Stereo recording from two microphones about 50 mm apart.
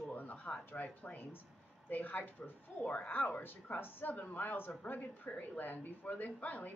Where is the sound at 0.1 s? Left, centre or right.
Left.